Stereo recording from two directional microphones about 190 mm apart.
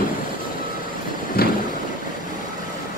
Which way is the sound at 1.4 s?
55° left (ahead or behind).